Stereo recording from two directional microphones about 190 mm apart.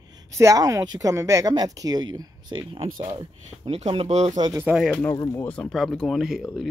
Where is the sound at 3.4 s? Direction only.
35° right (ahead or behind).